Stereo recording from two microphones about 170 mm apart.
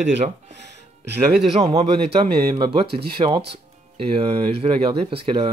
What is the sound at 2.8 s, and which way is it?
Speech, 70° right (ahead or behind).